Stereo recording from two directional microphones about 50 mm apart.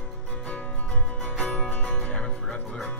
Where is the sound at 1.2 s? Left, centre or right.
Left.